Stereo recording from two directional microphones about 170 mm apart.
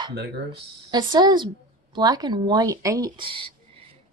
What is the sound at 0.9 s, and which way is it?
A woman's voice, 25° right (ahead or behind).